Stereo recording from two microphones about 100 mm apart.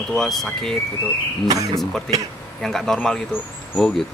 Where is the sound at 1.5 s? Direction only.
35° right (ahead or behind).